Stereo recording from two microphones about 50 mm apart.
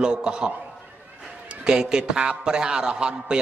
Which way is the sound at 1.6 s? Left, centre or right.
Centre.